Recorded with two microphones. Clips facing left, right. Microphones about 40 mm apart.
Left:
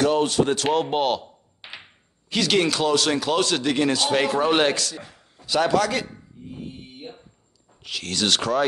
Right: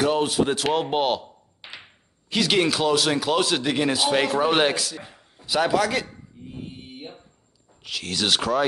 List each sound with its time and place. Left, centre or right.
0.0 s speech: centre
1.6 s a sound: centre
2.2 s speech: centre
5.0 s a sound: centre
5.5 s speech: centre
7.8 s speech: centre